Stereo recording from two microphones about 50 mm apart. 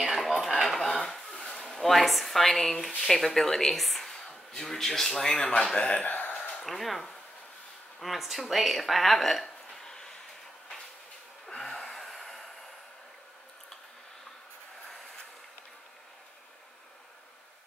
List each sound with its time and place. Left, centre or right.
0.0 s a sound: centre
0.8 s dishes: centre
1.4 s a sound: centre
1.7 s a man's voice: centre
5.3 s speech: left
5.6 s speech: centre
5.9 s speech: left
6.5 s speech: centre
9.8 s a sound: centre
11.4 s gasp: centre